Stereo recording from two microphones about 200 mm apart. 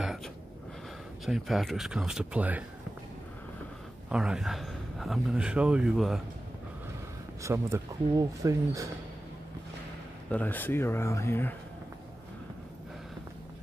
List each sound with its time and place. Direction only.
1.2 s speech: centre (ahead or behind)
4.1 s speech: 5° right (ahead or behind)
7.4 s speech: 15° right (ahead or behind)
10.3 s speech: 10° left (ahead or behind)